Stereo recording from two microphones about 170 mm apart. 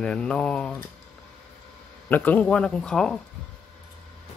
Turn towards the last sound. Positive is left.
turn(degrees=5)  # may be behind; listen again after turning